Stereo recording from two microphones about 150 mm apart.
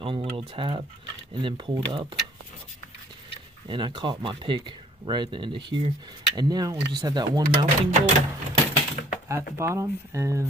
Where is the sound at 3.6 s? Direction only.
35° right (ahead or behind).